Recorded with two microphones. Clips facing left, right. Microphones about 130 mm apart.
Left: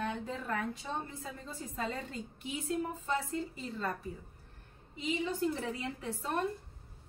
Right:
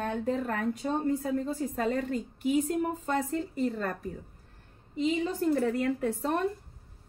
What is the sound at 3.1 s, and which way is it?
Speech, 50° right (ahead or behind).